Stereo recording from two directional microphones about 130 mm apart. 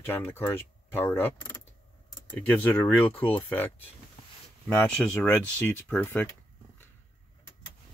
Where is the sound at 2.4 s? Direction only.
10° left (ahead or behind).